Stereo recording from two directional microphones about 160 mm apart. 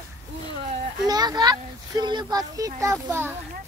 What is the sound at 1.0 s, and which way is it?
Speech, 25° right (ahead or behind).